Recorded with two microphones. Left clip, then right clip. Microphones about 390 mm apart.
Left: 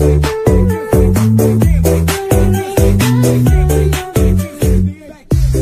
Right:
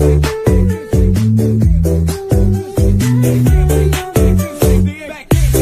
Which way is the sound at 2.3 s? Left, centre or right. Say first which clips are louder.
Left 3 dB; left.